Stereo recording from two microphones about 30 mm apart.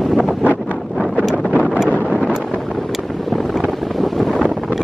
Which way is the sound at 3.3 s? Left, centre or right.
Centre.